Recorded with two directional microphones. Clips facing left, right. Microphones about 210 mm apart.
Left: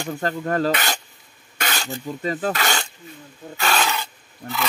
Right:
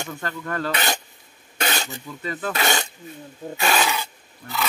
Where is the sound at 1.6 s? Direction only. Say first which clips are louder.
Right 2 dB; 25° right (ahead or behind).